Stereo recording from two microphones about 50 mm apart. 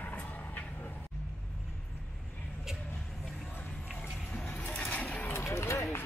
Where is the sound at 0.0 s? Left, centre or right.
Left.